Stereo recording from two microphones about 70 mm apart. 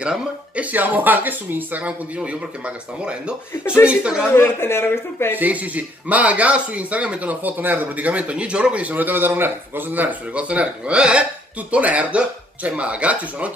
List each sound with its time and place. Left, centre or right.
0.0 s speech: centre
4.4 s speech: left
5.4 s speech: right